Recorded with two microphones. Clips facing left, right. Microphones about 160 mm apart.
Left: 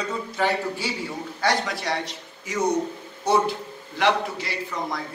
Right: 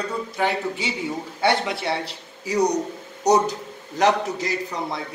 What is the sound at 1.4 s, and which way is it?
A man's voice, 25° right (ahead or behind).